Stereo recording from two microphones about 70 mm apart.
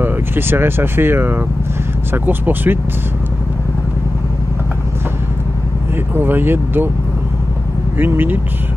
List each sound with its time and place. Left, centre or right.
0.0 s speech: right
6.1 s speech: right
8.0 s speech: right